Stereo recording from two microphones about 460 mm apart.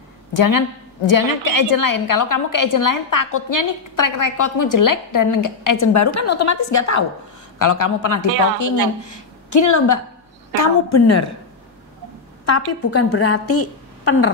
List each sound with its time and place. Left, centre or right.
0.4 s a woman's voice: left
12.4 s a woman's voice: left